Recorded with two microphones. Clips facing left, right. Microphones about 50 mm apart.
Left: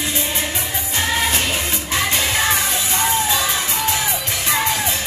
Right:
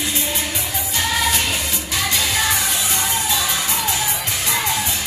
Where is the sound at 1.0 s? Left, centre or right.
Left.